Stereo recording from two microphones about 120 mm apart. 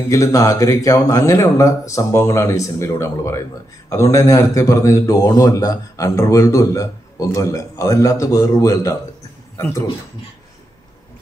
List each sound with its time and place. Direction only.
0.1 s a man's voice: 25° left (ahead or behind)